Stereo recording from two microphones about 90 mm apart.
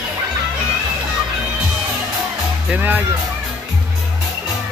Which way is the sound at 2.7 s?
20° right (ahead or behind).